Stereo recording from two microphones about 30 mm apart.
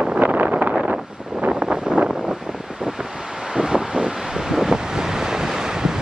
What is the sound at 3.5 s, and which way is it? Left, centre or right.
Vehicle, right.